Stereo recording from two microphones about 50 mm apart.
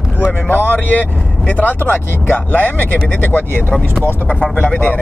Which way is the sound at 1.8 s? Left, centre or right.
Left.